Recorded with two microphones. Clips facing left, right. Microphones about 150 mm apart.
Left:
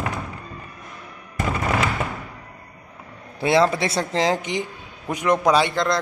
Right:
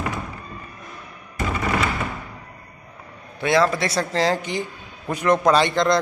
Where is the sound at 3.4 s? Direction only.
25° left (ahead or behind).